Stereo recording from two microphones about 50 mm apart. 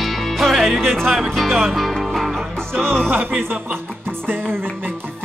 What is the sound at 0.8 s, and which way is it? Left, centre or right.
Music, centre.